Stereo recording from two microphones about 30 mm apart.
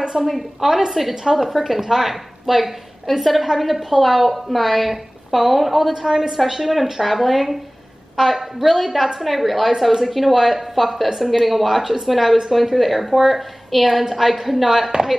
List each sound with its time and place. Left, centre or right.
0.2 s a woman's voice: centre
1.1 s a woman's voice: centre
1.4 s a woman's voice: centre
5.9 s a woman's voice: right
9.2 s a woman's voice: centre